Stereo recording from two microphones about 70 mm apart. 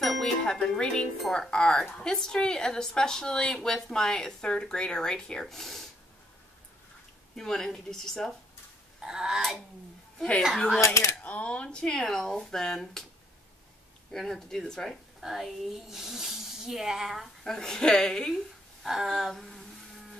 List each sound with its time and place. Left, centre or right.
0.0 s speech: centre
7.3 s speech: centre
9.0 s speech: centre
10.1 s a woman's voice: centre
14.1 s speech: centre
15.1 s speech: centre
18.8 s speech: centre
19.3 s a sound: centre